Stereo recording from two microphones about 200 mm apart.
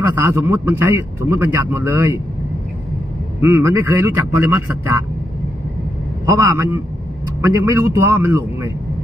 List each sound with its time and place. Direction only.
0.1 s a man's voice: 10° right (ahead or behind)
3.3 s a man's voice: 10° right (ahead or behind)
6.2 s a man's voice: 15° right (ahead or behind)